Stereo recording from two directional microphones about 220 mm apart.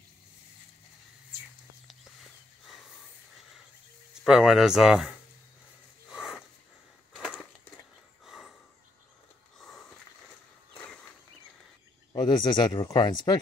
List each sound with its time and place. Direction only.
2.6 s snort: centre (ahead or behind)
4.1 s speech: centre (ahead or behind)
6.0 s a sound: centre (ahead or behind)
12.1 s speech: 20° left (ahead or behind)